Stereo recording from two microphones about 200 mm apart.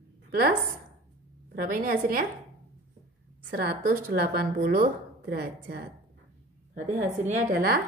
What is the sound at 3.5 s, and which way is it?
A woman's voice, 45° right (ahead or behind).